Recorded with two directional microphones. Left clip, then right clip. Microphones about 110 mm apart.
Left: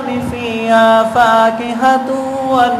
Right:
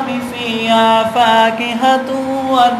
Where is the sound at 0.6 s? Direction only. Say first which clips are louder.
Left 2 dB; 35° left (ahead or behind).